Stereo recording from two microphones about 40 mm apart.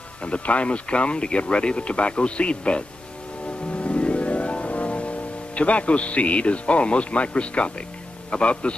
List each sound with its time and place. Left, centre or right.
0.2 s speech: left
3.7 s music: left
8.3 s speech: left